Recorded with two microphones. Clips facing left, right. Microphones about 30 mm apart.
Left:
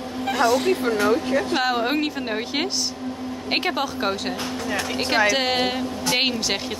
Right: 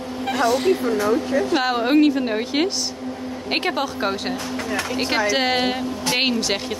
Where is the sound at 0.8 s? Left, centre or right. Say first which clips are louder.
Even; left.